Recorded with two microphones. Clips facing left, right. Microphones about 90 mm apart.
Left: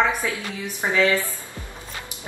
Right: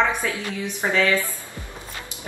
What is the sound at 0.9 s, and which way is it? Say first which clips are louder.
Speech: left 1 dB; 20° left (ahead or behind).